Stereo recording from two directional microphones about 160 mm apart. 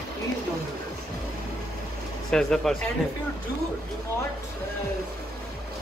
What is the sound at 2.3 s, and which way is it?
Speech, centre (ahead or behind).